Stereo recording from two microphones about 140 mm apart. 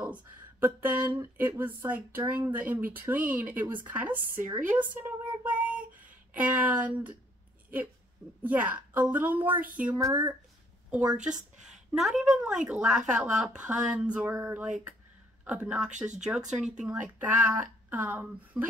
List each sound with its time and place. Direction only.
0.0 s speech: 10° right (ahead or behind)
4.6 s a sound: 10° right (ahead or behind)
8.4 s speech: 10° right (ahead or behind)
10.9 s speech: 10° right (ahead or behind)
14.3 s a sound: 20° right (ahead or behind)
14.6 s speech: 10° right (ahead or behind)